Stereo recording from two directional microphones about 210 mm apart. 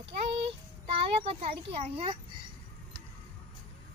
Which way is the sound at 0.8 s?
30° right (ahead or behind).